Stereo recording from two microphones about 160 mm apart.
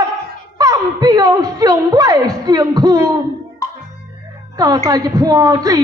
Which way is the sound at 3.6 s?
20° left (ahead or behind).